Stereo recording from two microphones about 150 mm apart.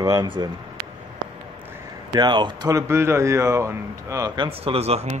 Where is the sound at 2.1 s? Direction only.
30° right (ahead or behind).